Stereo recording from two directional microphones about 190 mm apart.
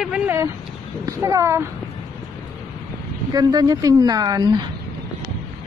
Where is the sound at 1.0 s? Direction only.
15° right (ahead or behind).